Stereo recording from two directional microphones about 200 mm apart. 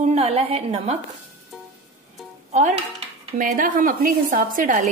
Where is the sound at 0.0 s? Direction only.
30° right (ahead or behind).